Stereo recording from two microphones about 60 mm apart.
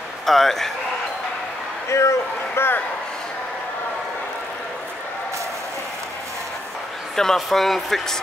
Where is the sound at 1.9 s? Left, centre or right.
Left.